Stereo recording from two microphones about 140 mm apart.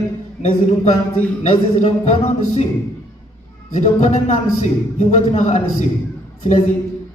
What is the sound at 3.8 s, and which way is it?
A man's voice, 55° left (ahead or behind).